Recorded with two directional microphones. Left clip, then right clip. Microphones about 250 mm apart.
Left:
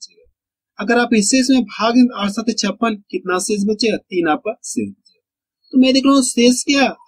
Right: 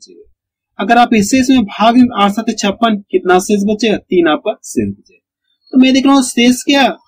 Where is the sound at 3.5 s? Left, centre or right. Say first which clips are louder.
Right 4 dB; centre.